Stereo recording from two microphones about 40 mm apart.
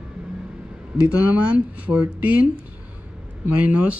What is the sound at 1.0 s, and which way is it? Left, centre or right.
Speech, right.